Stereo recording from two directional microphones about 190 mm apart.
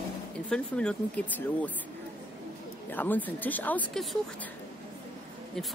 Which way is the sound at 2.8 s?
10° left (ahead or behind).